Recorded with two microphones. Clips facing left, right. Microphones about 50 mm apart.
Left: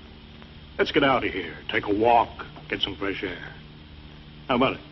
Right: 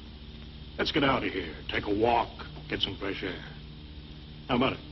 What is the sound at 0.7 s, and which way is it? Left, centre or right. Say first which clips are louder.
A man's voice: left 6 dB; left.